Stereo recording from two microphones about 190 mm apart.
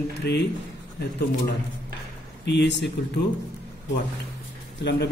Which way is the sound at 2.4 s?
65° left (ahead or behind).